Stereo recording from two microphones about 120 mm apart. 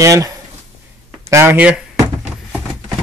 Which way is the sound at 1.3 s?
25° right (ahead or behind).